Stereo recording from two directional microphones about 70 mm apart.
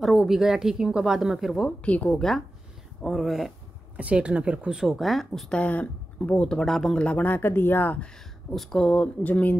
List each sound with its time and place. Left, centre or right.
0.0 s a woman's voice: centre
1.9 s speech: left
2.1 s a woman's voice: centre
3.9 s speech: centre
4.7 s a woman's voice: centre
5.5 s speech: left
8.5 s speech: centre
8.9 s speech: left